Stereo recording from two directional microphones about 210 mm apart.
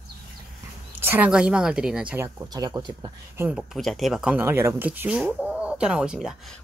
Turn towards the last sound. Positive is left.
turn(degrees=0)  # may be behind; listen again after turning